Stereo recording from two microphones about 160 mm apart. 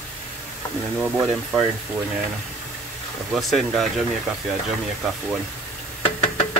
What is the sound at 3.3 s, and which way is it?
Speech, centre (ahead or behind).